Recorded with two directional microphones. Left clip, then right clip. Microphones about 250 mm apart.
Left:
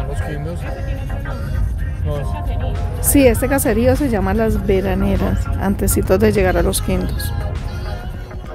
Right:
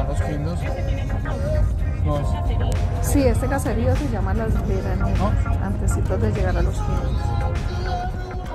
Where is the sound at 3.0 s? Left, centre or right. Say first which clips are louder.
Left 8 dB; left.